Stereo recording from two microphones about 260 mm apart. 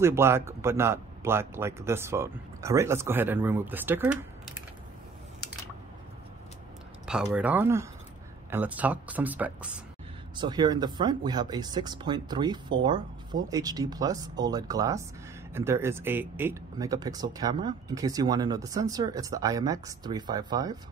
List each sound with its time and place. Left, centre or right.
0.0 s speech: centre
7.1 s speech: centre
10.3 s speech: centre